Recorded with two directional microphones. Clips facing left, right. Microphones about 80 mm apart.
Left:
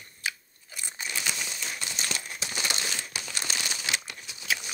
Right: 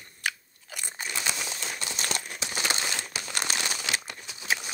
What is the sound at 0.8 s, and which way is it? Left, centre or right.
Crunch, right.